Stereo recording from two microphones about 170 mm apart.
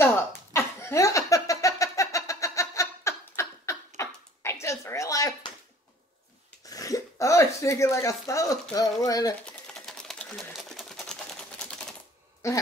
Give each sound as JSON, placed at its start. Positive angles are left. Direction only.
{"t": 0.0, "sound": "a sound", "side_deg": 15}
{"t": 6.7, "sound": "speech", "side_deg": 20}
{"t": 9.5, "sound": "sewing machine", "side_deg": 5}
{"t": 12.4, "sound": "a man's voice", "side_deg": 15}